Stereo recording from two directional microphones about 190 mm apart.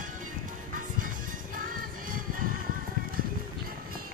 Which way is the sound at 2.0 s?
45° right (ahead or behind).